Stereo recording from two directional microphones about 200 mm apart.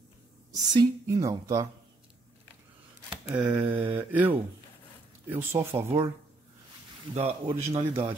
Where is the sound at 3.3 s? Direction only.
10° right (ahead or behind).